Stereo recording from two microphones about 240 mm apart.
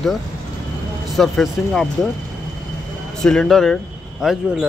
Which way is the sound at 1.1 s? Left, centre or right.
Centre.